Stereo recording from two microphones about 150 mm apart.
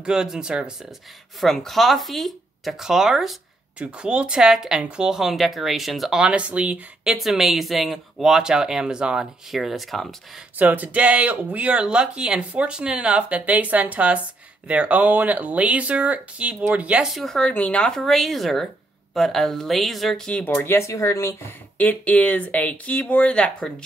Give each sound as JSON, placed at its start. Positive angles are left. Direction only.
{"t": 0.0, "sound": "speech", "side_deg": -5}
{"t": 21.7, "sound": "speech", "side_deg": 10}